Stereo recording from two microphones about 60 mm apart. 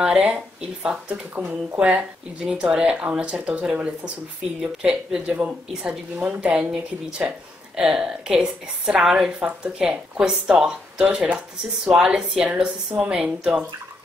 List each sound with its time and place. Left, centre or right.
0.8 s speech: centre
1.3 s speech: right
1.8 s speech: centre
4.6 s speech: centre
5.2 s speech: right
5.7 s speech: centre